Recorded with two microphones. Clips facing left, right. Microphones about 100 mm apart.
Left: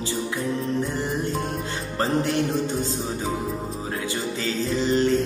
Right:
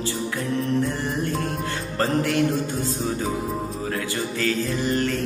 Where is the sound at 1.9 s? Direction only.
25° left (ahead or behind).